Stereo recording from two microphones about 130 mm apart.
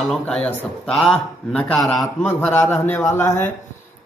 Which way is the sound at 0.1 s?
5° left (ahead or behind).